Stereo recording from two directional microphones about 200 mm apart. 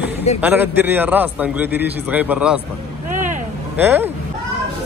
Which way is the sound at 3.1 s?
40° right (ahead or behind).